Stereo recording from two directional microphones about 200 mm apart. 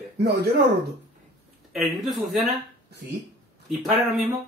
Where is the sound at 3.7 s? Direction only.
Centre (ahead or behind).